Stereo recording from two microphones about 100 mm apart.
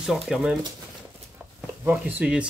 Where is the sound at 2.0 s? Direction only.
15° right (ahead or behind).